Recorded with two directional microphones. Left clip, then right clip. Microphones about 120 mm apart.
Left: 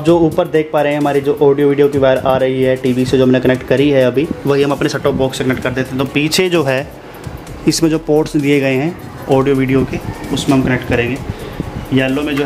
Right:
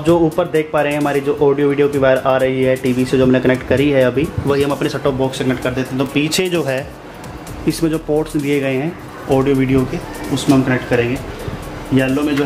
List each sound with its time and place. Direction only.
0.0 s speech: 25° left (ahead or behind)
9.4 s speech: 20° left (ahead or behind)